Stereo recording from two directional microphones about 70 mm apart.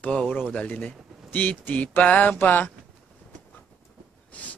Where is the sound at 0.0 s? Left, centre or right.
Centre.